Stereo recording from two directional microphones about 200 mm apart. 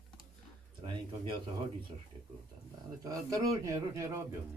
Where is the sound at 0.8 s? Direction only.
25° right (ahead or behind).